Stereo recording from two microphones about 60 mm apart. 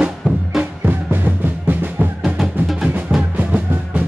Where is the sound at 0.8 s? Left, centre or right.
Right.